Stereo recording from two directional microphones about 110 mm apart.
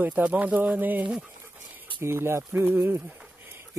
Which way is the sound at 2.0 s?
25° right (ahead or behind).